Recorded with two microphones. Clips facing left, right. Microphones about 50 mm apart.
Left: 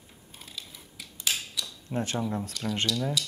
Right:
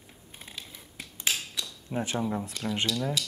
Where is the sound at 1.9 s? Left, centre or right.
Centre.